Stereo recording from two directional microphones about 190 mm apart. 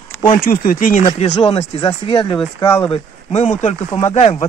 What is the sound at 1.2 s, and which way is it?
Speech, 30° left (ahead or behind).